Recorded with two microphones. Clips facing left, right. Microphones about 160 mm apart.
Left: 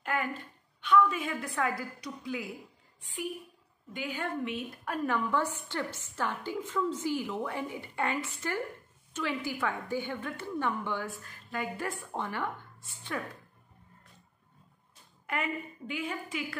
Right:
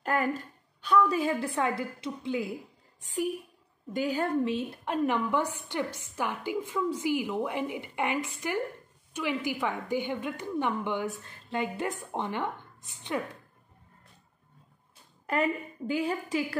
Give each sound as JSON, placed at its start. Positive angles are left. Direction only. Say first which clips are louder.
{"t": 0.0, "sound": "a woman's voice", "louder": "right 5 dB", "side_deg": -40}
{"t": 3.0, "sound": "a woman's voice", "louder": "right 6 dB", "side_deg": -40}
{"t": 15.2, "sound": "a woman's voice", "louder": "right 6 dB", "side_deg": -35}